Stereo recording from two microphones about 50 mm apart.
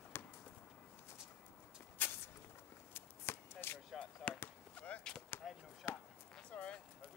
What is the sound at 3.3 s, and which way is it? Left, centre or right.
Shuffle, left.